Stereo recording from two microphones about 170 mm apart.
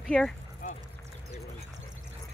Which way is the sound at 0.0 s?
5° left (ahead or behind).